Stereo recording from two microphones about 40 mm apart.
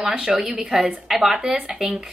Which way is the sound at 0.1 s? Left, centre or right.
Right.